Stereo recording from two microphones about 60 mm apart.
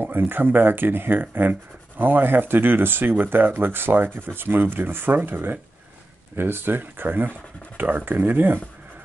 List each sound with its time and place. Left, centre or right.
0.0 s speech: right